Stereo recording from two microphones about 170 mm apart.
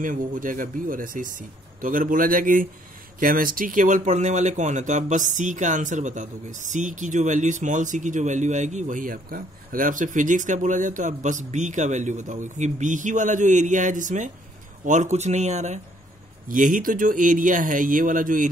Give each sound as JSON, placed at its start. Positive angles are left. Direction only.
{"t": 0.0, "sound": "speech", "side_deg": -50}